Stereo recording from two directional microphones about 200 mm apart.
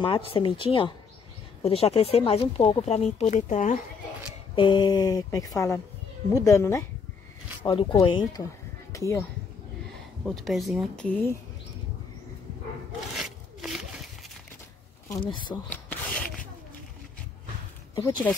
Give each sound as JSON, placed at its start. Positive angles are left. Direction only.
{"t": 0.0, "sound": "speech", "side_deg": 25}
{"t": 4.6, "sound": "speech", "side_deg": 20}
{"t": 7.6, "sound": "speech", "side_deg": 25}
{"t": 10.2, "sound": "speech", "side_deg": 0}
{"t": 13.1, "sound": "wood", "side_deg": 0}
{"t": 15.0, "sound": "speech", "side_deg": 25}
{"t": 15.7, "sound": "a sound", "side_deg": 5}
{"t": 17.9, "sound": "speech", "side_deg": 20}